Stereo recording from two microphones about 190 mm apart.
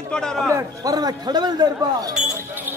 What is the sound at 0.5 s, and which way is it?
A man's voice, 20° right (ahead or behind).